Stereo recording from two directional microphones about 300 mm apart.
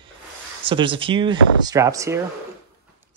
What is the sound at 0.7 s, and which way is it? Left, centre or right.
Speech, centre.